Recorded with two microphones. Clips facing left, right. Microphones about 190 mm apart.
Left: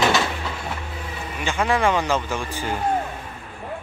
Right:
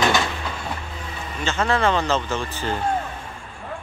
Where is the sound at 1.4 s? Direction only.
15° left (ahead or behind).